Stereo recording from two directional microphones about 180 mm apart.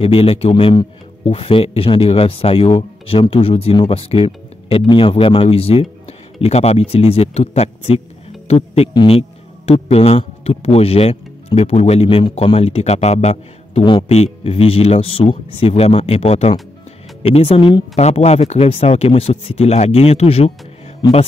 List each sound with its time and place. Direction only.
0.0 s speech: 30° left (ahead or behind)